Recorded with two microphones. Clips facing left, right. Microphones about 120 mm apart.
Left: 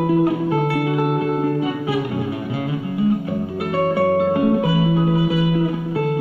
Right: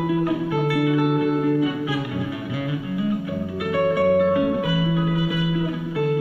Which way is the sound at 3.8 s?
30° left (ahead or behind).